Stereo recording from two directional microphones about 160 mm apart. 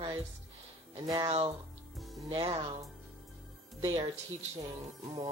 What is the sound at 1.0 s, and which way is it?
Speech, 20° right (ahead or behind).